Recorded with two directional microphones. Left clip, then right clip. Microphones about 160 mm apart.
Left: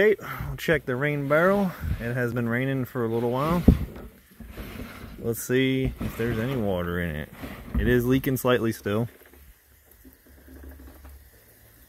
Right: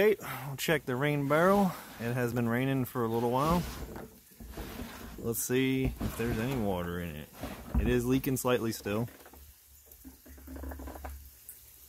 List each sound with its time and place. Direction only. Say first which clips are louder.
0.0 s speech: left 6 dB; centre (ahead or behind)
5.2 s speech: left 6 dB; 10° left (ahead or behind)
6.9 s speech: left 9 dB; 30° left (ahead or behind)
7.8 s speech: left 7 dB; 20° left (ahead or behind)